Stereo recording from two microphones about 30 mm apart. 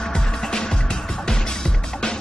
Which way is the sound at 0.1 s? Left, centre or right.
Left.